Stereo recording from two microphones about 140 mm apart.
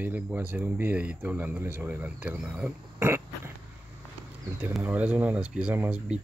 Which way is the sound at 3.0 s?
20° right (ahead or behind).